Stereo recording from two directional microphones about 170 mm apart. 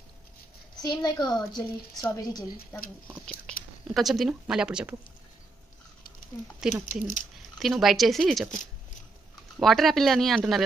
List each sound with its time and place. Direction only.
0.8 s a woman's voice: 25° left (ahead or behind)
3.3 s speech: 5° left (ahead or behind)
6.7 s speech: 5° right (ahead or behind)
9.6 s speech: centre (ahead or behind)